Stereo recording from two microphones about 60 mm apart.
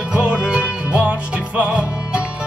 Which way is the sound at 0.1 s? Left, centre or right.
Right.